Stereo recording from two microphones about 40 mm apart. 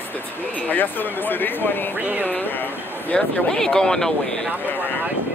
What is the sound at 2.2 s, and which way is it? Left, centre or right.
Speech, left.